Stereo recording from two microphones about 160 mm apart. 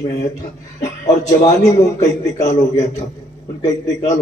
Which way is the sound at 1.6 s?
20° left (ahead or behind).